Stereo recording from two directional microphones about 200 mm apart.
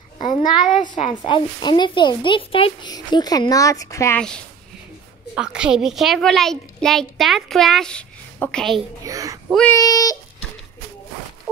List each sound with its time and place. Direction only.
0.2 s a child's voice: 20° left (ahead or behind)
0.6 s a woman's voice: 40° left (ahead or behind)
0.9 s a woman's voice: 25° left (ahead or behind)
5.3 s a child's voice: 5° right (ahead or behind)
9.0 s a child's voice: 15° right (ahead or behind)
9.7 s speech: 20° left (ahead or behind)